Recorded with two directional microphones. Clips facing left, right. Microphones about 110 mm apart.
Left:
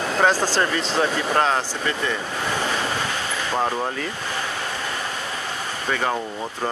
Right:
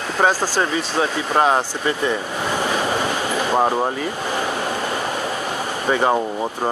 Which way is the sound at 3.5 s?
25° right (ahead or behind).